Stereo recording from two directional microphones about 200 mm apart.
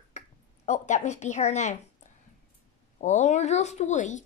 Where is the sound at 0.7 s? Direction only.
35° left (ahead or behind).